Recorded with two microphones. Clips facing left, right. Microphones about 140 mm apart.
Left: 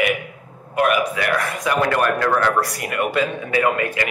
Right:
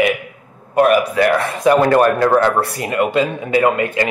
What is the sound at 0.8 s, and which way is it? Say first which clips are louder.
A man's voice: right 6 dB; 35° right (ahead or behind).